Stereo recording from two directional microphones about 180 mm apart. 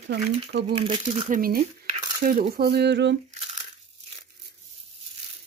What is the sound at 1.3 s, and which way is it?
Speech, 55° right (ahead or behind).